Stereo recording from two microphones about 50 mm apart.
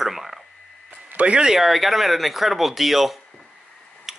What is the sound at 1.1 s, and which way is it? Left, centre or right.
Speech, right.